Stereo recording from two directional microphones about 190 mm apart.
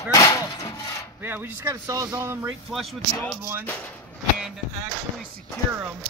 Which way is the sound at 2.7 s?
Centre (ahead or behind).